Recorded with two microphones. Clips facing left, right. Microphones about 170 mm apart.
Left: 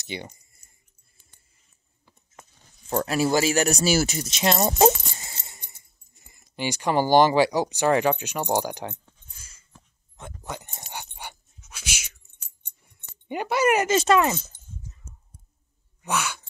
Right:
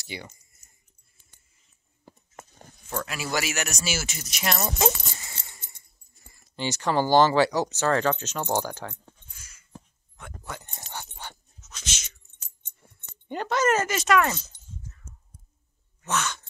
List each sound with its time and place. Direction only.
0.0 s speech: 20° left (ahead or behind)
2.0 s a sound: 50° right (ahead or behind)
2.9 s speech: 35° left (ahead or behind); by 9.0 s 20° left (ahead or behind)
9.4 s a sound: 30° left (ahead or behind)
10.4 s keys jangling: 20° left (ahead or behind)
10.9 s dog: 15° left (ahead or behind)
12.6 s keys jangling: 10° left (ahead or behind)
13.8 s speech: 25° left (ahead or behind)
16.0 s sigh: 10° left (ahead or behind)